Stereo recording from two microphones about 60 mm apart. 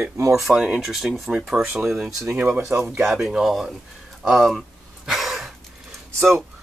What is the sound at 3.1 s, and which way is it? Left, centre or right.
Speech, centre.